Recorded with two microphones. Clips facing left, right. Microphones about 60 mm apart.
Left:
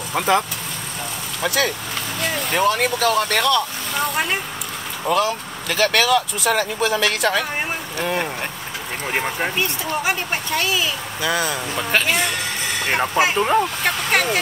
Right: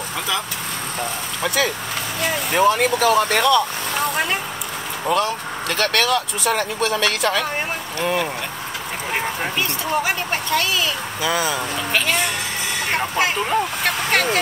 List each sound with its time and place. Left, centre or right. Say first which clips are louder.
0.3 s speech: left 8 dB; left
1.4 s speech: even; centre
9.1 s speech: left 1 dB; centre
12.9 s speech: left 3 dB; centre
13.8 s speech: even; centre